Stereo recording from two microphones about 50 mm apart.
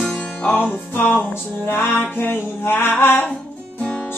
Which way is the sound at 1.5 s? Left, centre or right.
Left.